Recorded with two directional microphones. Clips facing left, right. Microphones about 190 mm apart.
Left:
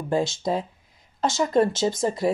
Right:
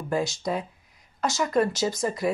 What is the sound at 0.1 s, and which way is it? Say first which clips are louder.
Speech: left 3 dB; 25° left (ahead or behind).